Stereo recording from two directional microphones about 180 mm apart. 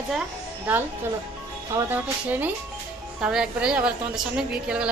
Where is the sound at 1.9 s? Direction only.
10° right (ahead or behind).